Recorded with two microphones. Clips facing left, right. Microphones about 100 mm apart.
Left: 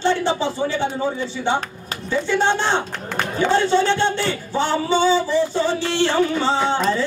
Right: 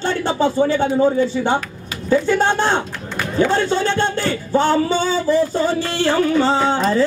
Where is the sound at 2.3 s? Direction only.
45° right (ahead or behind).